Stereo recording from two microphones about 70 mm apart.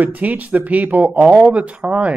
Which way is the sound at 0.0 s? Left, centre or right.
Right.